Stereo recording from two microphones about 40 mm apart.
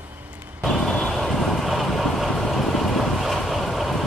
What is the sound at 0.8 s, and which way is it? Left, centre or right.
Vehicle, centre.